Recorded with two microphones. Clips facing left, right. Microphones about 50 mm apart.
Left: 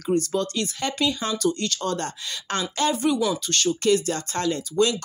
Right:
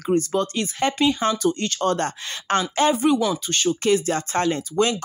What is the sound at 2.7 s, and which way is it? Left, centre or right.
Speech, right.